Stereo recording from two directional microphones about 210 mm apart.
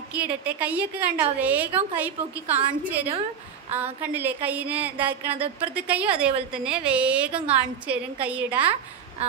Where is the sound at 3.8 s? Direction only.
10° right (ahead or behind).